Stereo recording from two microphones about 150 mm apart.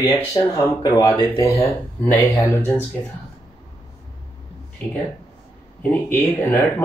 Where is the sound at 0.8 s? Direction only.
30° left (ahead or behind).